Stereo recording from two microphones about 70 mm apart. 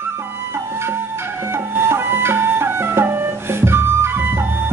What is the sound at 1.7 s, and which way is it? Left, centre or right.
Music, right.